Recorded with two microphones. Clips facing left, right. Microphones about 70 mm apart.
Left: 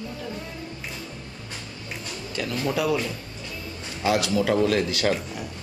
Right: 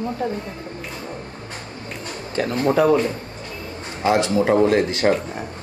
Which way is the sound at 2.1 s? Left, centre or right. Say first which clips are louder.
Right 7 dB; right.